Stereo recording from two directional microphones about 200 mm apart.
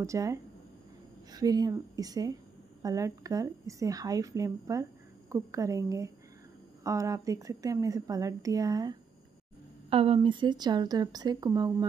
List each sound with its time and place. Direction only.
0.0 s a woman's voice: 15° right (ahead or behind)